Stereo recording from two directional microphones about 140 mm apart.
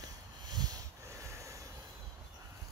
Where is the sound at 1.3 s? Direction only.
20° right (ahead or behind).